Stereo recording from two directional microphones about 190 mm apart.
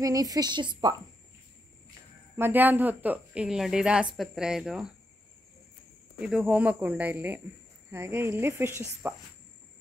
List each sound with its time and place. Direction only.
0.0 s a woman's voice: 20° right (ahead or behind)
2.3 s speech: 10° right (ahead or behind)
6.1 s speech: 5° right (ahead or behind)
9.0 s insect: 10° right (ahead or behind)